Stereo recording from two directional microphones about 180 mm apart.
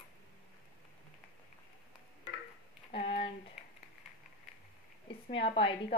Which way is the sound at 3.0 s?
60° left (ahead or behind).